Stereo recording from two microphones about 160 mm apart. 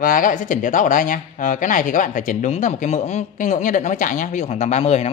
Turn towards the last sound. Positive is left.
turn(degrees=40)  # may be behind; listen again after turning